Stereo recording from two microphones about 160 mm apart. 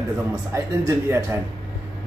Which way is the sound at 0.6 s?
15° right (ahead or behind).